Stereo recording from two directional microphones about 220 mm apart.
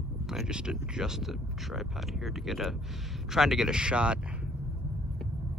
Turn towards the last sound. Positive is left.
turn(degrees=-5)  # may be behind; listen again after turning